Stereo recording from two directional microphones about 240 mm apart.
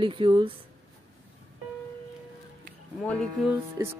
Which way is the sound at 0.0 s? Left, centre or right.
Right.